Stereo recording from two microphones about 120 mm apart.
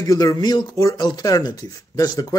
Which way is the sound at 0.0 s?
30° left (ahead or behind).